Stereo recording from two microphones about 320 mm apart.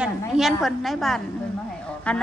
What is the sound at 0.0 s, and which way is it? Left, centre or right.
A woman's voice, centre.